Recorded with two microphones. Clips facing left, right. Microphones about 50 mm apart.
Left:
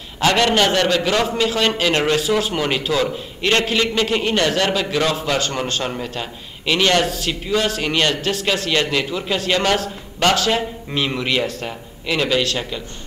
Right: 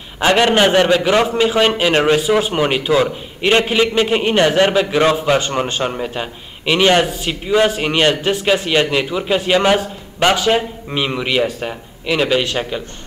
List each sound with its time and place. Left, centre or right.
0.2 s a man's voice: right